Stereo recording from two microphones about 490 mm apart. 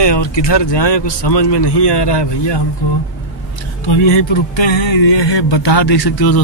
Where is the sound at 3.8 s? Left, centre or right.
Left.